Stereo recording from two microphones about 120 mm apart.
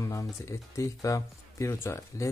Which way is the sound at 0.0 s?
25° left (ahead or behind).